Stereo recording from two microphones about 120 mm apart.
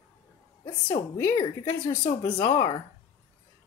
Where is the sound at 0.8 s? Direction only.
20° left (ahead or behind).